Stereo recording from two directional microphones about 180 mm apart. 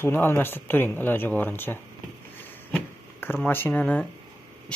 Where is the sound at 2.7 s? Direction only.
10° left (ahead or behind).